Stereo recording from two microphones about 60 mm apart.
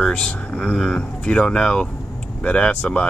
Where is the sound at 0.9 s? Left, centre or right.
Centre.